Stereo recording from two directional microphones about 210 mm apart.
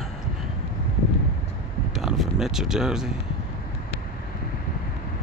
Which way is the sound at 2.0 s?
Centre (ahead or behind).